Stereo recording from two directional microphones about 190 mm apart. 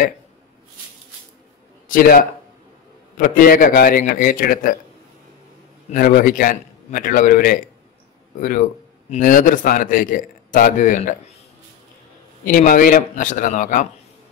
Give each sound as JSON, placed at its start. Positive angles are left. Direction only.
{"t": 1.9, "sound": "a man's voice", "side_deg": 50}
{"t": 5.9, "sound": "a man's voice", "side_deg": 45}
{"t": 12.4, "sound": "a man's voice", "side_deg": 45}